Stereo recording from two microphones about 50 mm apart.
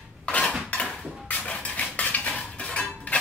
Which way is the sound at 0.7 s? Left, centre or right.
Left.